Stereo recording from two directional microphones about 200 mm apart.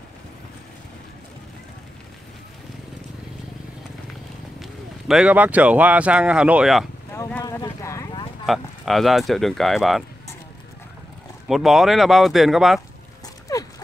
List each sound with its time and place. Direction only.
4.6 s speech: centre (ahead or behind)
7.1 s a sound: 10° left (ahead or behind)
8.5 s speech: centre (ahead or behind)
11.4 s speech: centre (ahead or behind)
13.5 s dog: 15° left (ahead or behind)